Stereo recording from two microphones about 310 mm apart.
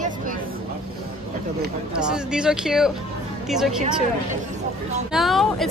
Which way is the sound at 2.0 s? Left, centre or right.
Centre.